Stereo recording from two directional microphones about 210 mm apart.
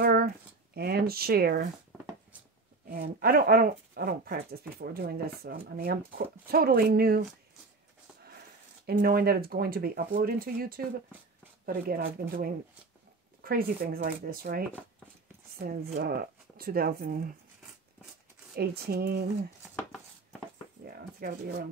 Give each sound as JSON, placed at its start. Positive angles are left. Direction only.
{"t": 0.0, "sound": "a sound", "side_deg": -45}
{"t": 0.7, "sound": "speech", "side_deg": -45}
{"t": 2.9, "sound": "speech", "side_deg": -45}
{"t": 8.8, "sound": "speech", "side_deg": -45}
{"t": 15.6, "sound": "speech", "side_deg": -45}
{"t": 18.6, "sound": "speech", "side_deg": -50}
{"t": 20.8, "sound": "speech", "side_deg": -45}